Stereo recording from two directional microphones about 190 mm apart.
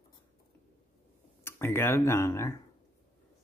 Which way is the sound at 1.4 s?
15° left (ahead or behind).